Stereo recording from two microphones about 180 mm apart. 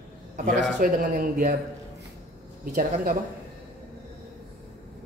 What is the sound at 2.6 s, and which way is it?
Speech, 50° right (ahead or behind).